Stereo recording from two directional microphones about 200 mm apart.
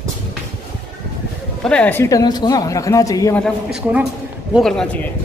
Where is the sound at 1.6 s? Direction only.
5° left (ahead or behind).